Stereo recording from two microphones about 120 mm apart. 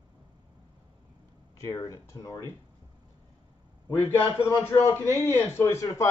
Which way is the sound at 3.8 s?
20° left (ahead or behind).